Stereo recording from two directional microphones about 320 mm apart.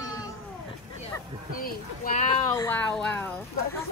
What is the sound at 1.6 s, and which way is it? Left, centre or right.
Speech, left.